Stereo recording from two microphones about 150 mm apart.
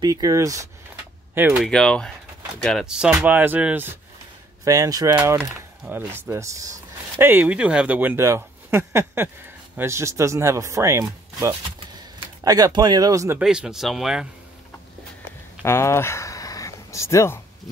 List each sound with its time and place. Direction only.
0.0 s speech: 25° right (ahead or behind)
1.6 s speech: 5° left (ahead or behind); by 3.9 s 10° right (ahead or behind)
4.6 s speech: 25° right (ahead or behind)
5.1 s speech: 10° right (ahead or behind)
13.4 s speech: 5° right (ahead or behind)
15.6 s a sound: 15° left (ahead or behind)